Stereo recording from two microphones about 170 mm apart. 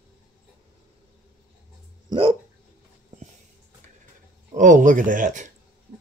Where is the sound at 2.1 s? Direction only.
30° right (ahead or behind).